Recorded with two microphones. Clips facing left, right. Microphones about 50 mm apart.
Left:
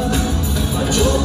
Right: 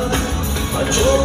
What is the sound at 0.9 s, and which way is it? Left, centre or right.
Music, right.